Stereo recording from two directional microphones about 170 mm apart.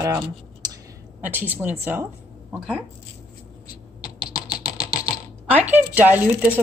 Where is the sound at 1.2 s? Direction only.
10° right (ahead or behind).